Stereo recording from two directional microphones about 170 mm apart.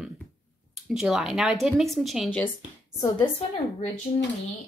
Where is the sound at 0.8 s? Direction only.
Centre (ahead or behind).